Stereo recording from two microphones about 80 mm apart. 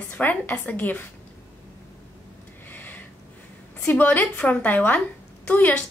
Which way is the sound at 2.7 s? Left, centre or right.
Left.